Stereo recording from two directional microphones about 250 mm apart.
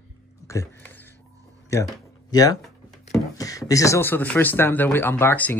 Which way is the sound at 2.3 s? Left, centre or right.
Centre.